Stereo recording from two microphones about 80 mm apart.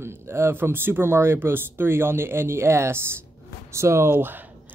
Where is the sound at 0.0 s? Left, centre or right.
Right.